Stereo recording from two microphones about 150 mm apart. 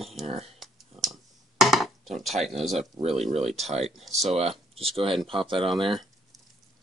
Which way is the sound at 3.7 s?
45° right (ahead or behind).